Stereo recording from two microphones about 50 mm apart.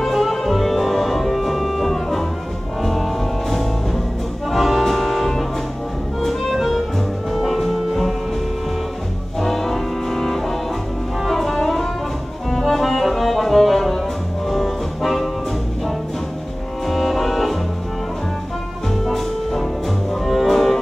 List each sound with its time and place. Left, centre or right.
0.0 s music: centre
9.4 s music: centre
16.8 s music: centre
19.0 s music: centre